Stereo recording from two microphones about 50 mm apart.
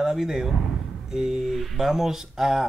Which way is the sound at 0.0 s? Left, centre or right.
Centre.